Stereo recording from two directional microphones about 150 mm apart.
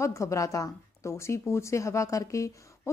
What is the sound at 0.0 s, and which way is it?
Speech, 20° left (ahead or behind).